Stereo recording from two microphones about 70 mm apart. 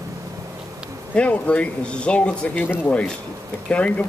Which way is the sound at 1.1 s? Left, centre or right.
Centre.